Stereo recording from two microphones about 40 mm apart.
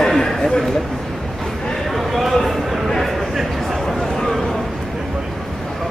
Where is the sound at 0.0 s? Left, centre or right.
Centre.